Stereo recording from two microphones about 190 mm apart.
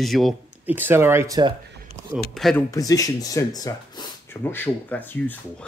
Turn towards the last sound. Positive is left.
turn(degrees=10)  # may be behind; listen again after turning